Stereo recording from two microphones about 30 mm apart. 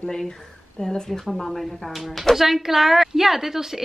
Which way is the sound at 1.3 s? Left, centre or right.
Centre.